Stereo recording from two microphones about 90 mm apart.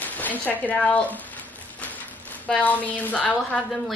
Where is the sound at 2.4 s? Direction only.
15° left (ahead or behind).